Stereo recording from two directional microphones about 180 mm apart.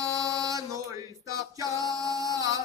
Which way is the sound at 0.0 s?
20° right (ahead or behind).